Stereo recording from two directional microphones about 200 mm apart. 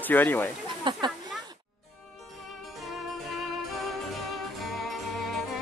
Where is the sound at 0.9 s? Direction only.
20° right (ahead or behind).